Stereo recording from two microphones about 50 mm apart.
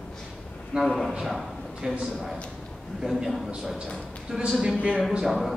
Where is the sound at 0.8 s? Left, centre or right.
Centre.